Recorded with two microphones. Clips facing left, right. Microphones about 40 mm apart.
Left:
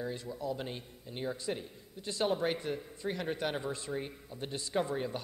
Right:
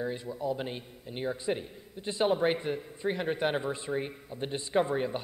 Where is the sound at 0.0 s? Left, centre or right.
Right.